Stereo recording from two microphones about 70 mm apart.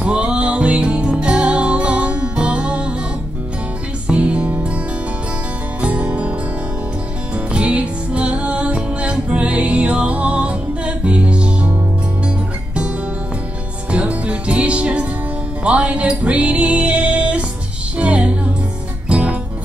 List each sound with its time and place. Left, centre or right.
0.0 s music: centre
4.1 s music: centre
5.8 s music: centre
7.3 s music: centre
13.8 s music: centre